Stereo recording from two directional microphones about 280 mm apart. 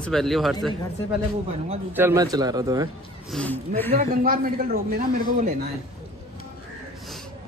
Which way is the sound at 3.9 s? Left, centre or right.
Right.